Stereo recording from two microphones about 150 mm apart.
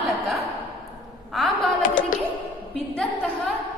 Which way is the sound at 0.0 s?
Centre (ahead or behind).